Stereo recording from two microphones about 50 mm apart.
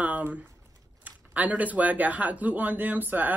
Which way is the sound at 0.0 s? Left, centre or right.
Right.